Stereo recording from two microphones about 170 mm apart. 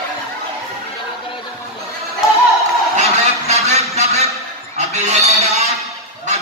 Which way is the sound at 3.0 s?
40° right (ahead or behind).